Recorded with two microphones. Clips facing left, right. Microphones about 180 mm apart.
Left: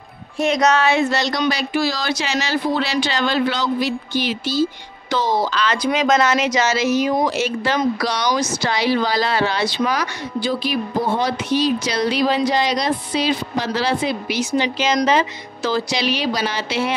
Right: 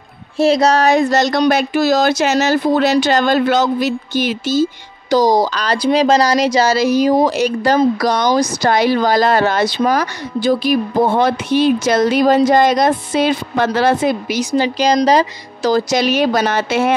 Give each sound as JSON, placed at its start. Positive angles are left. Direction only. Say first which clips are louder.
{"t": 0.4, "sound": "speech", "louder": "right 5 dB", "side_deg": -30}